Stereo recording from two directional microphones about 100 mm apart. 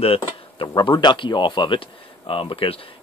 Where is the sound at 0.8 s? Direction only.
55° left (ahead or behind).